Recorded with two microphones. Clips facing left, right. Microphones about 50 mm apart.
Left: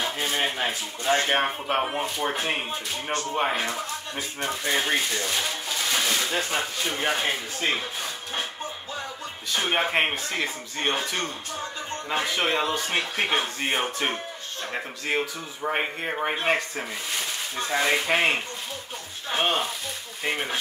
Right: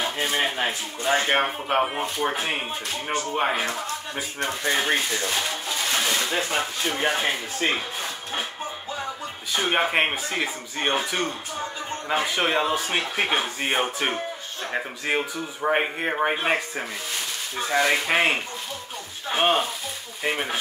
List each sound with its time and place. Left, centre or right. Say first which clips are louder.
0.4 s speech: right 2 dB; centre
9.5 s speech: right 2 dB; centre
20.2 s speech: right 2 dB; centre